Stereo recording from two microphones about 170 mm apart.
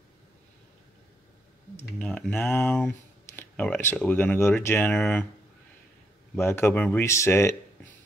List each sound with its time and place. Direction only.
1.8 s speech: 5° left (ahead or behind)
6.3 s speech: 15° left (ahead or behind)